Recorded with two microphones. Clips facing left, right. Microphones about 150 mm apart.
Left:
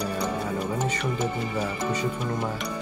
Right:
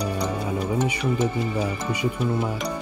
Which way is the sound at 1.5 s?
10° right (ahead or behind).